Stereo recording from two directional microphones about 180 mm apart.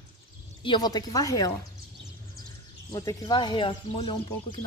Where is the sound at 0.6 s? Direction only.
25° left (ahead or behind).